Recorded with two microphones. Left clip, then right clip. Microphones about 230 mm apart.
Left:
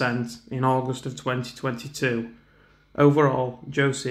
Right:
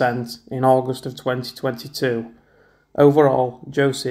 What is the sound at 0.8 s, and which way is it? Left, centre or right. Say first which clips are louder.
Speech: right 5 dB; centre.